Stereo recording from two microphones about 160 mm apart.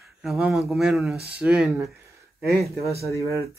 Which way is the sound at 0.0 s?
Centre (ahead or behind).